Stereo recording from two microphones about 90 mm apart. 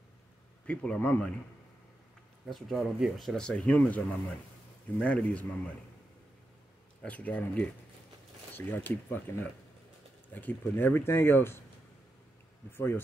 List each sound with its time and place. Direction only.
0.7 s speech: 15° left (ahead or behind)
2.4 s speech: centre (ahead or behind)
3.3 s speech: 10° left (ahead or behind)
7.1 s speech: 15° left (ahead or behind)
12.7 s speech: 25° left (ahead or behind)